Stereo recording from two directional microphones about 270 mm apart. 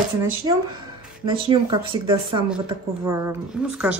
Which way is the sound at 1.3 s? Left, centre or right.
Centre.